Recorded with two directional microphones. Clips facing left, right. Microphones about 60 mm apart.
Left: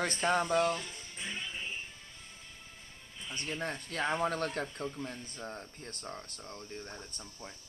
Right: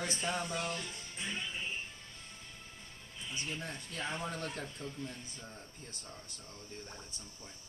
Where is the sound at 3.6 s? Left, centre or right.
Left.